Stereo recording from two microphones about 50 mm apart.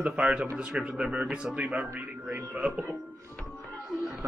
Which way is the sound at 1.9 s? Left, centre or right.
Right.